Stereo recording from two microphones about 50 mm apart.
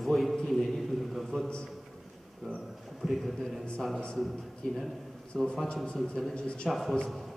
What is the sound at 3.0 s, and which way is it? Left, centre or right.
Speech, centre.